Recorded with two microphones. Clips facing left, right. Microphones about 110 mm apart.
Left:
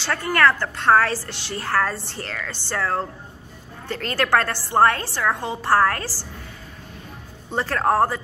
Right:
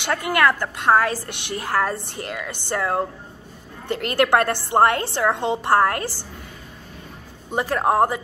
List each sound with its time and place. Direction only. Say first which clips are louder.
0.0 s a woman's voice: even; 15° right (ahead or behind)
7.5 s a woman's voice: right 1 dB; 15° right (ahead or behind)